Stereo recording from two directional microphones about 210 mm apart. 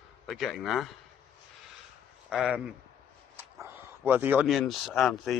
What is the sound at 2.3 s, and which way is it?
Speech, 5° right (ahead or behind).